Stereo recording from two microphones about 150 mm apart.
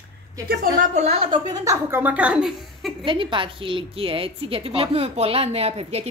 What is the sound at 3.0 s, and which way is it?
A woman's voice, 35° right (ahead or behind).